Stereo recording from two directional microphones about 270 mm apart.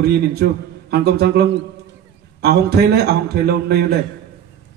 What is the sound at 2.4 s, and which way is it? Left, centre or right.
A man's voice, right.